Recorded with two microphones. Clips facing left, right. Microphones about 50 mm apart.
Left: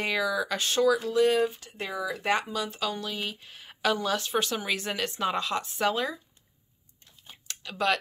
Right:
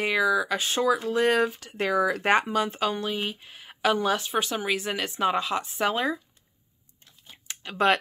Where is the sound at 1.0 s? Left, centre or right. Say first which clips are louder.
Even; right.